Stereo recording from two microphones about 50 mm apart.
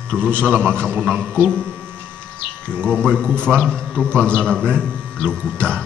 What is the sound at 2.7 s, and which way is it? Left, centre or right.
A man's voice, centre.